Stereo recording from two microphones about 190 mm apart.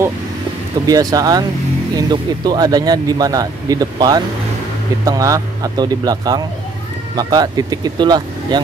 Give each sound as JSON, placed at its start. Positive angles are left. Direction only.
{"t": 0.8, "sound": "speech", "side_deg": -20}